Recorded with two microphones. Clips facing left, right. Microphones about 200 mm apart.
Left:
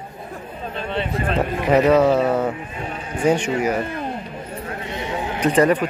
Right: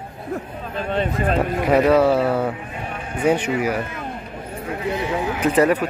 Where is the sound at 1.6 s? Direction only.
Centre (ahead or behind).